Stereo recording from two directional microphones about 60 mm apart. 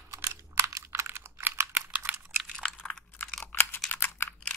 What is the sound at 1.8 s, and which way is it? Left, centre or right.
Typing, right.